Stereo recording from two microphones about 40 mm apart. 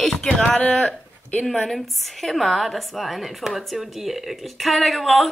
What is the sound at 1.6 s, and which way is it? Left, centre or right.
A woman's voice, centre.